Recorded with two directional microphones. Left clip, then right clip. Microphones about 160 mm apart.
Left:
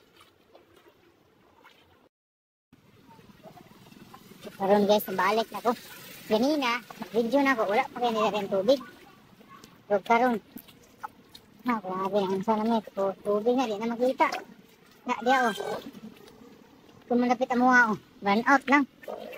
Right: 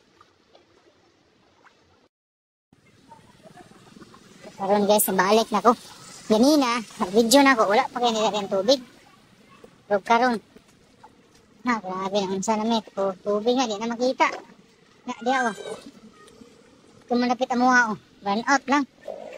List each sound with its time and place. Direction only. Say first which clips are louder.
4.6 s a child's voice: right 2 dB; 5° left (ahead or behind)
5.1 s speech: right 6 dB; 25° right (ahead or behind)
8.1 s a child's voice: right 3 dB; 5° right (ahead or behind)
10.0 s a child's voice: right 4 dB; 5° right (ahead or behind)
11.6 s a child's voice: right 3 dB; centre (ahead or behind)
12.9 s a child's voice: right 3 dB; 5° right (ahead or behind)
17.1 s a child's voice: right 2 dB; centre (ahead or behind)